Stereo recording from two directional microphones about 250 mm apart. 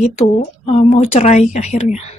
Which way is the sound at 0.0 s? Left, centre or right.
Left.